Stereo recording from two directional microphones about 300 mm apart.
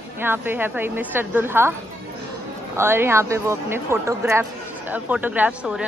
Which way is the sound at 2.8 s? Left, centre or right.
Centre.